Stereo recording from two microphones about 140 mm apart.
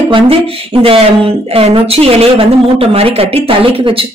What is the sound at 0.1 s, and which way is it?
Speech, 45° right (ahead or behind).